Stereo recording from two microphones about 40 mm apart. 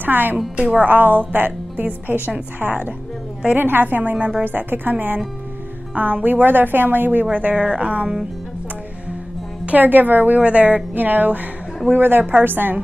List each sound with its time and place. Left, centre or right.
0.0 s a woman's voice: right
2.1 s a woman's voice: right
3.5 s speech: right
3.8 s speech: right
4.5 s a woman's voice: right
7.3 s speech: right
9.7 s a woman's voice: right
10.4 s a woman's voice: right